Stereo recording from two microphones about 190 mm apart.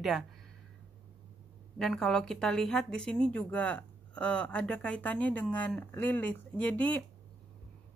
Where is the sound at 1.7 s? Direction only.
Centre (ahead or behind).